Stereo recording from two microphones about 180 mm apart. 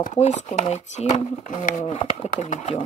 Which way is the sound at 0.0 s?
40° left (ahead or behind).